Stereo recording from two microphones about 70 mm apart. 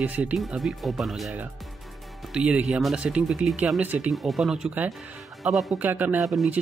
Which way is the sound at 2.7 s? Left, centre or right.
Centre.